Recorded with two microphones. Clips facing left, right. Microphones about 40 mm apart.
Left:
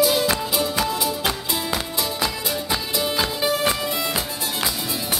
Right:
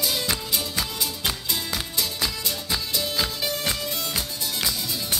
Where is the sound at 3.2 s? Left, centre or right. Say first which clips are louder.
Left 6 dB; centre.